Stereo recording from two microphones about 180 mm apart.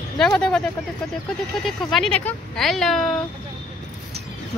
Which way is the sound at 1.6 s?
Centre (ahead or behind).